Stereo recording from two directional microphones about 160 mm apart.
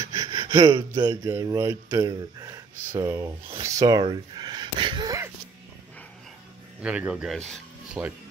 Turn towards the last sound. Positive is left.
turn(degrees=5)  # may be behind; listen again after turning